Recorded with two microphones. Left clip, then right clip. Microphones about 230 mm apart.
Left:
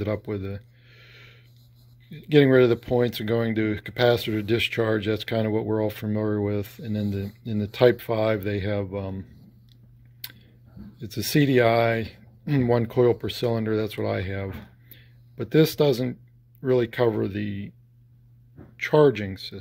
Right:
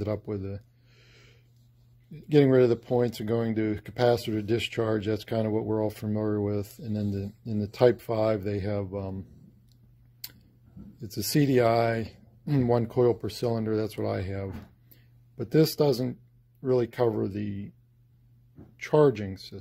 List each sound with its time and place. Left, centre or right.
0.0 s a sound: centre
2.0 s speech: centre
11.0 s speech: centre
18.8 s speech: centre